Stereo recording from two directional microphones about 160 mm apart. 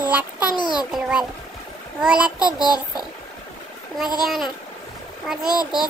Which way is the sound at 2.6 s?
25° left (ahead or behind).